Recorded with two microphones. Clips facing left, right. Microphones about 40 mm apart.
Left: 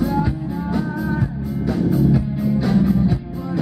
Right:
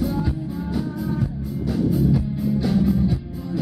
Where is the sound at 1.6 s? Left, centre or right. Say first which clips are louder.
Left 2 dB; centre.